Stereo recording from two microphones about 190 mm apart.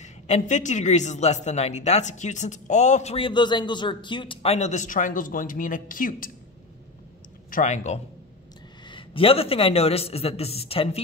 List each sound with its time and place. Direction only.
0.0 s a man's voice: 40° left (ahead or behind)
7.5 s a man's voice: 40° left (ahead or behind)
8.8 s a man's voice: 25° left (ahead or behind)